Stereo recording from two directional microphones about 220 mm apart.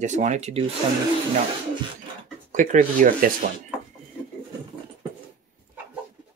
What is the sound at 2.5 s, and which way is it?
Speech, 35° right (ahead or behind).